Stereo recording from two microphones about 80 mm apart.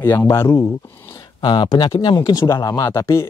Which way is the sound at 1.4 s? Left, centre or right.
Left.